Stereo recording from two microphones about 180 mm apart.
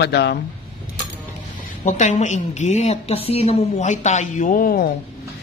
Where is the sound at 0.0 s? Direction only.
65° left (ahead or behind).